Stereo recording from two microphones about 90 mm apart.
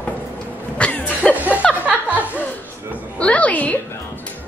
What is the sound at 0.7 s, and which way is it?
Cough, 15° left (ahead or behind).